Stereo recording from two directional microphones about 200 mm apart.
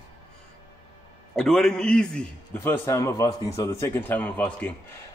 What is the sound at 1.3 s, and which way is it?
A man's voice, centre (ahead or behind).